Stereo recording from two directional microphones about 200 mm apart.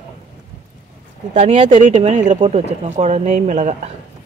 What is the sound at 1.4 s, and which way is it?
Speech, 35° right (ahead or behind).